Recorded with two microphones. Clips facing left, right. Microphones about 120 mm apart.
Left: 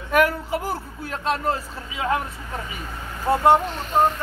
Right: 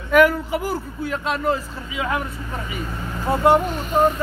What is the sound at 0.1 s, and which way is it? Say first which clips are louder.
Speech: right 4 dB; 30° left (ahead or behind).